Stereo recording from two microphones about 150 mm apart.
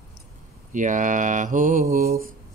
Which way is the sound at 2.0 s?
75° right (ahead or behind).